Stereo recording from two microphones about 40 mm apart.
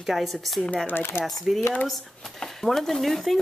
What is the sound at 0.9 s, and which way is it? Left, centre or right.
Speech, left.